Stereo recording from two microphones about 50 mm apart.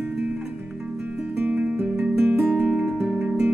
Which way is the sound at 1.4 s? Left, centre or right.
Right.